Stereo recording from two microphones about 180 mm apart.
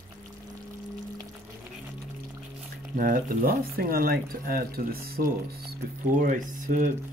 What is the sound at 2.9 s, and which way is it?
Speech, 50° right (ahead or behind).